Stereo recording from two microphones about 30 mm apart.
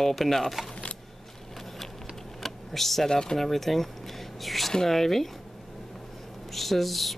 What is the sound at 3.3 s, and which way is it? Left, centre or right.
Speech, centre.